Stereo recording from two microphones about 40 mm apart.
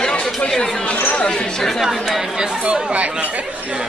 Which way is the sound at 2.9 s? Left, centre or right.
Right.